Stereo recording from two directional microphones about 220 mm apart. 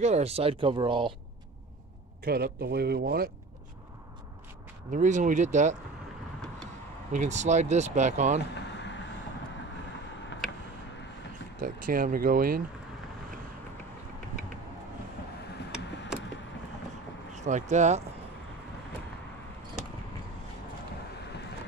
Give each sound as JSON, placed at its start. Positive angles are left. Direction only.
{"t": 0.0, "sound": "speech", "side_deg": -30}
{"t": 2.2, "sound": "speech", "side_deg": -45}
{"t": 4.9, "sound": "speech", "side_deg": -35}
{"t": 7.1, "sound": "speech", "side_deg": -35}
{"t": 11.6, "sound": "speech", "side_deg": -40}
{"t": 17.3, "sound": "speech", "side_deg": -35}